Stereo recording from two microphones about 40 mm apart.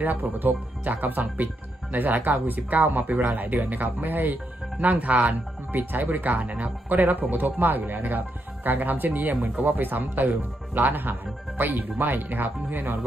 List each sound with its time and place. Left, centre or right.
0.0 s speech: right
5.7 s speech: right